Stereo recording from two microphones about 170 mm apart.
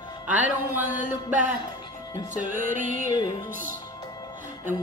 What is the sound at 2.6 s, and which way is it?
Music, 50° right (ahead or behind).